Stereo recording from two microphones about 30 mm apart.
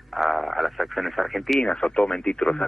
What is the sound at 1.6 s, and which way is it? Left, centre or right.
Speech, left.